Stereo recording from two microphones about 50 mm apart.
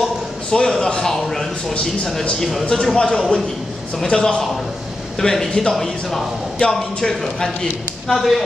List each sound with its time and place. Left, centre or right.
0.5 s speech: centre